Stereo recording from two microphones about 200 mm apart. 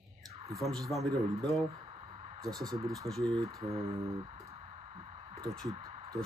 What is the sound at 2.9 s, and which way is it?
Speech, centre (ahead or behind).